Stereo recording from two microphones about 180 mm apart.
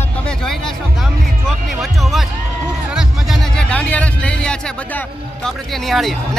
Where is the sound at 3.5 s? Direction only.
5° left (ahead or behind).